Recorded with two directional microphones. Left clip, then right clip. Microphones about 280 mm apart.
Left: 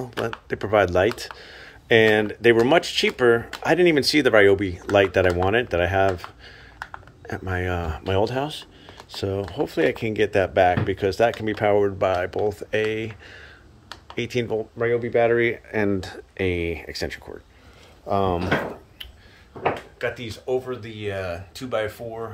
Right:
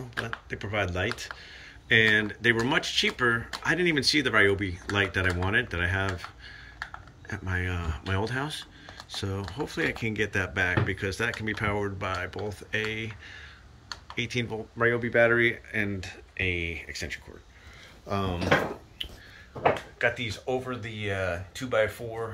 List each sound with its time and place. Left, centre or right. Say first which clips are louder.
0.2 s speech: left 7 dB; centre
19.0 s finger snapping: right 6 dB; centre
20.0 s speech: right 1 dB; centre